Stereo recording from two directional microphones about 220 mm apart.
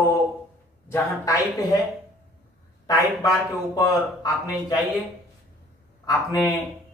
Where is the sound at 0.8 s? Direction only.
15° left (ahead or behind).